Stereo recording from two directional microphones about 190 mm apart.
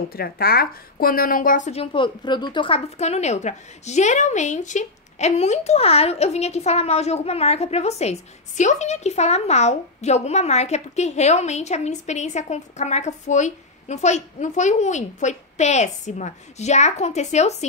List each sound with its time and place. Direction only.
0.1 s speech: 55° left (ahead or behind); by 17.6 s 35° left (ahead or behind)